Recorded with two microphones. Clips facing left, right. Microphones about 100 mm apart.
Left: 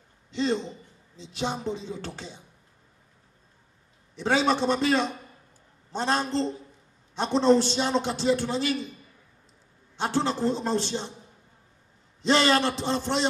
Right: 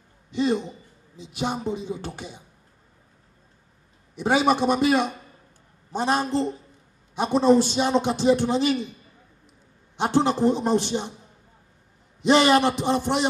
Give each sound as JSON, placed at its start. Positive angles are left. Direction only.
{"t": 0.3, "sound": "a man's voice", "side_deg": -15}
{"t": 4.1, "sound": "a man's voice", "side_deg": -15}
{"t": 9.9, "sound": "a man's voice", "side_deg": -15}
{"t": 12.2, "sound": "a man's voice", "side_deg": -15}